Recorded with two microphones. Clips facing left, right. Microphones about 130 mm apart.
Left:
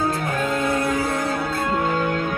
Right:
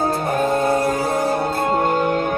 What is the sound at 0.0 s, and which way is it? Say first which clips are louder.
Music: right 4 dB; 30° right (ahead or behind).